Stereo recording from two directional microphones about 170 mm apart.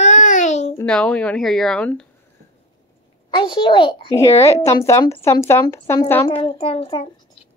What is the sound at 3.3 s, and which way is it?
Speech, 25° left (ahead or behind).